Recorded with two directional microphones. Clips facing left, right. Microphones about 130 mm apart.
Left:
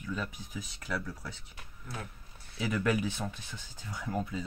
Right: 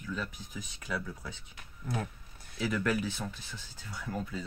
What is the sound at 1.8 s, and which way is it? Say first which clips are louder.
Speech: right 7 dB; 35° right (ahead or behind).